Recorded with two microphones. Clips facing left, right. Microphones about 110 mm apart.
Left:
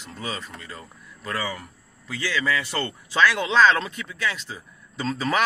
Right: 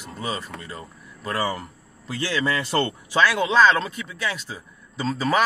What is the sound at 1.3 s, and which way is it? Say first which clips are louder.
Speech: right 4 dB; 30° right (ahead or behind).